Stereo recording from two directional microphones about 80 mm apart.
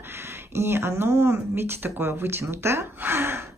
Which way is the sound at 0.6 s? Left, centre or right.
Right.